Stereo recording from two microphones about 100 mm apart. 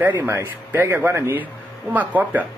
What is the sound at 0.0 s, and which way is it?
A man's voice, 20° right (ahead or behind).